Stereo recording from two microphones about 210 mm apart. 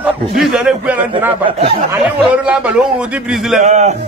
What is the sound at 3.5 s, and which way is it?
Speech, 35° right (ahead or behind).